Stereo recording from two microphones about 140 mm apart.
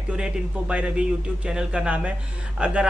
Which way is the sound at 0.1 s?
5° right (ahead or behind).